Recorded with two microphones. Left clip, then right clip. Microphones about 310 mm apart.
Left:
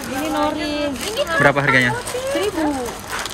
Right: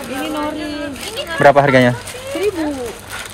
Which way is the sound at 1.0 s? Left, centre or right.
Left.